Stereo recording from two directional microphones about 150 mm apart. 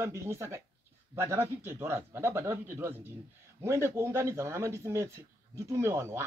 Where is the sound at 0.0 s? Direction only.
20° right (ahead or behind).